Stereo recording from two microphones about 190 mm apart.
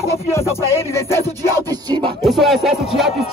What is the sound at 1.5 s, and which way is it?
Music, 20° right (ahead or behind).